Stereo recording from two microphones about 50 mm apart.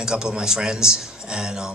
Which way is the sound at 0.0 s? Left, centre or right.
Centre.